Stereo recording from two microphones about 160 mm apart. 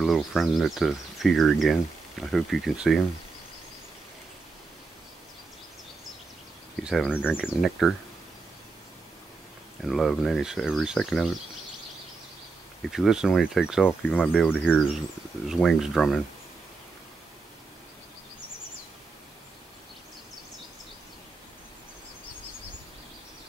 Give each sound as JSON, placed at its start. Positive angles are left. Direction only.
{"t": 0.0, "sound": "speech", "side_deg": 0}
{"t": 6.8, "sound": "speech", "side_deg": -5}
{"t": 7.1, "sound": "speech", "side_deg": 10}
{"t": 7.3, "sound": "speech", "side_deg": 0}
{"t": 9.8, "sound": "speech", "side_deg": 0}
{"t": 12.9, "sound": "speech", "side_deg": -5}
{"t": 13.8, "sound": "speech", "side_deg": 10}
{"t": 15.4, "sound": "speech", "side_deg": -5}